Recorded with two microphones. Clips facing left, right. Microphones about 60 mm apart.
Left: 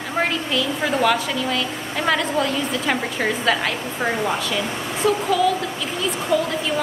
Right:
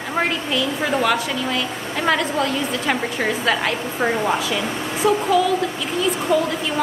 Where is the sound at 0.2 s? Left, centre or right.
Centre.